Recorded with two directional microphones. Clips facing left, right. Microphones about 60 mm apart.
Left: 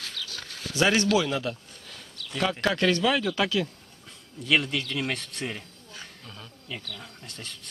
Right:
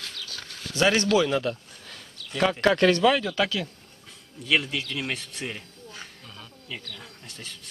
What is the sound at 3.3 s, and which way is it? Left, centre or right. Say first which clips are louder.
Speech: even; centre.